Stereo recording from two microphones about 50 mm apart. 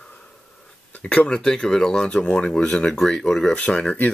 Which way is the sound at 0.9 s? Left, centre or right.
Left.